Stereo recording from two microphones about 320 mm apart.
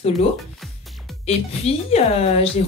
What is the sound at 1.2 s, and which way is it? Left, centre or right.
A woman's voice, centre.